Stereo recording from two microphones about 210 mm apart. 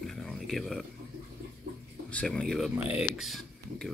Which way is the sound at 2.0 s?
5° left (ahead or behind).